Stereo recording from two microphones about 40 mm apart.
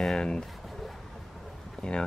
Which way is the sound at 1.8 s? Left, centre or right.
Left.